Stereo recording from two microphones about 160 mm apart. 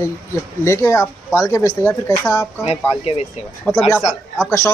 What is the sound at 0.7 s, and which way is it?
Speech, 15° left (ahead or behind).